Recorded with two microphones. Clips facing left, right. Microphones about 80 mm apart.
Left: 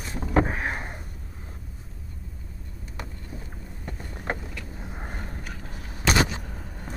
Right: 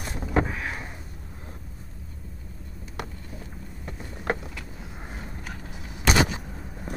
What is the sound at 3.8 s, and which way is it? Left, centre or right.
Boat, centre.